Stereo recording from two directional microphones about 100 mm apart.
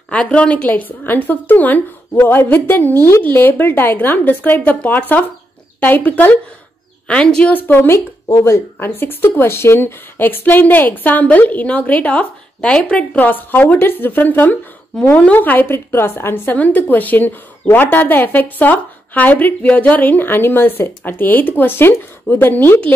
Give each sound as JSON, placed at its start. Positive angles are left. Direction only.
{"t": 0.1, "sound": "a woman's voice", "side_deg": 10}
{"t": 7.5, "sound": "a woman's voice", "side_deg": 20}